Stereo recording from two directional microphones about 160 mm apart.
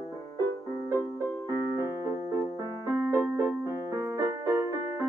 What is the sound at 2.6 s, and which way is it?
Music, 20° right (ahead or behind).